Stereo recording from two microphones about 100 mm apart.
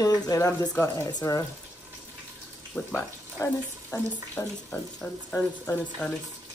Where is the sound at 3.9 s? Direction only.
15° left (ahead or behind).